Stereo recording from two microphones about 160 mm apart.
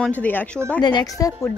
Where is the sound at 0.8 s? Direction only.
25° left (ahead or behind).